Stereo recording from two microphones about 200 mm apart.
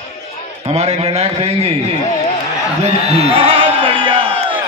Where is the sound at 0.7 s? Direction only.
30° right (ahead or behind).